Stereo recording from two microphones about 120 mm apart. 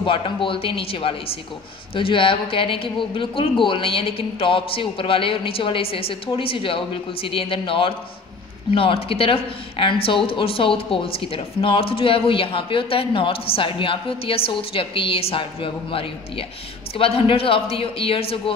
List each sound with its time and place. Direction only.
0.0 s speech: 45° left (ahead or behind)